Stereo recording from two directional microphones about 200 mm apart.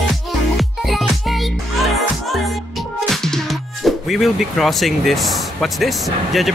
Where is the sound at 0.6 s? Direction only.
Centre (ahead or behind).